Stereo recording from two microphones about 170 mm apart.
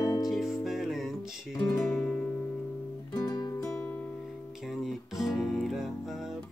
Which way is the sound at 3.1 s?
25° left (ahead or behind).